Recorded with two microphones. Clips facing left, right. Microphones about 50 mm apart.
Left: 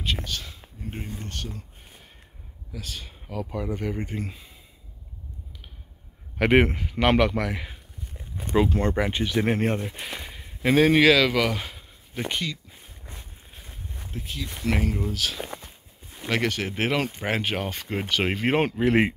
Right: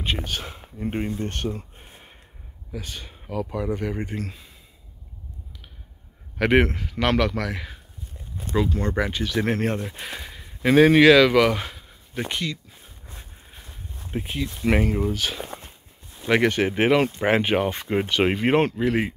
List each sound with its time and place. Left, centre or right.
0.2 s speech: right
2.7 s speech: centre
6.3 s a man's voice: centre
8.4 s speech: left
9.1 s speech: centre
9.4 s speech: centre
14.1 s speech: right
14.6 s speech: centre
16.3 s speech: right; by 18.7 s centre